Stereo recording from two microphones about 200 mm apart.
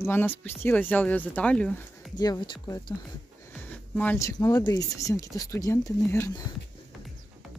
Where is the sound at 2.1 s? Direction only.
20° left (ahead or behind).